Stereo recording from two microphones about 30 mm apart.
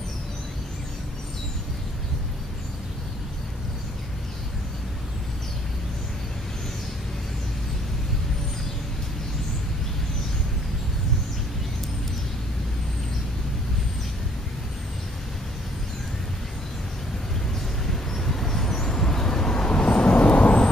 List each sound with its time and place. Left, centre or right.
17.8 s vehicle: centre; by 20.0 s left
20.0 s vehicle: left